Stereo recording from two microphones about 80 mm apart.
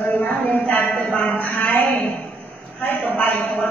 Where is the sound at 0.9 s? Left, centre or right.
Centre.